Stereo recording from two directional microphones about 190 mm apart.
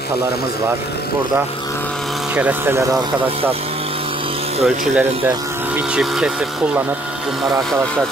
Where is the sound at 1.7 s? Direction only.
10° left (ahead or behind); by 4.6 s 30° right (ahead or behind).